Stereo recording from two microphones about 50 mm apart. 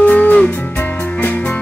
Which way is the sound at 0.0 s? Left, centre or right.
Left.